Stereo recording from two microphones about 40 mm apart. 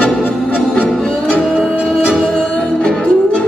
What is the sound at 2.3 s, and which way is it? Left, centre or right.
Music, left.